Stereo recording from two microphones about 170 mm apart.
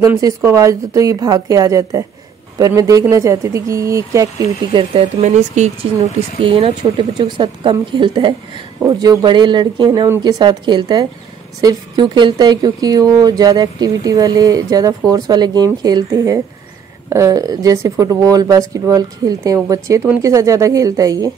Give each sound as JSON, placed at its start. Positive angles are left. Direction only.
{"t": 0.0, "sound": "speech", "side_deg": -20}
{"t": 4.9, "sound": "speech", "side_deg": -45}
{"t": 6.4, "sound": "speech", "side_deg": -30}